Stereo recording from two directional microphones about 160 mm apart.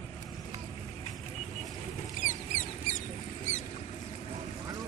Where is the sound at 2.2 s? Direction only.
55° left (ahead or behind).